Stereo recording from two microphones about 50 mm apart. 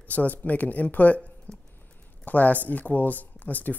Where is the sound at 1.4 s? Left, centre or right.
Left.